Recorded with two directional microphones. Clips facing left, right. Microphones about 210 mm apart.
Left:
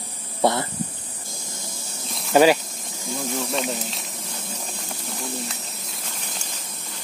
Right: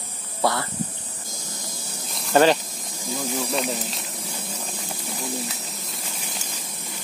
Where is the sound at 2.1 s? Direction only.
5° left (ahead or behind).